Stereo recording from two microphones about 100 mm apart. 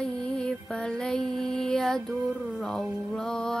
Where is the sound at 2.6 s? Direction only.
5° left (ahead or behind).